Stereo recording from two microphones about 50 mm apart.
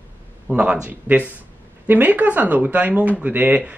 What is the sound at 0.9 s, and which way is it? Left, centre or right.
Speech, right.